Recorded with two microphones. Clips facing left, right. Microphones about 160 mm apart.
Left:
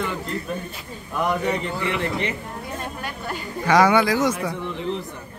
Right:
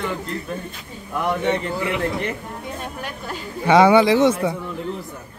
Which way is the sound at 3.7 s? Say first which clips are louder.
Right 4 dB; 25° right (ahead or behind).